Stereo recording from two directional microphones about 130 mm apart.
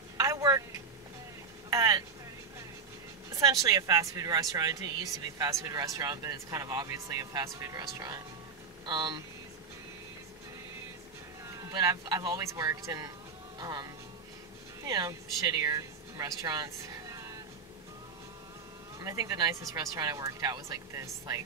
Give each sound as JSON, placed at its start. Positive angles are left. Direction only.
{"t": 0.2, "sound": "vehicle", "side_deg": -25}
{"t": 1.7, "sound": "vehicle", "side_deg": -25}
{"t": 3.3, "sound": "speech", "side_deg": -25}
{"t": 11.4, "sound": "speech", "side_deg": -25}
{"t": 18.9, "sound": "speech", "side_deg": -25}